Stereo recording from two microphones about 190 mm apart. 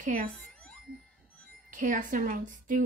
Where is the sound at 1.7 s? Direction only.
45° right (ahead or behind).